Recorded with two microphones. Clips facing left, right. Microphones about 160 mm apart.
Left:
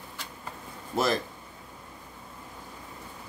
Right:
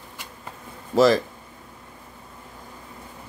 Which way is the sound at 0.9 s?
90° right.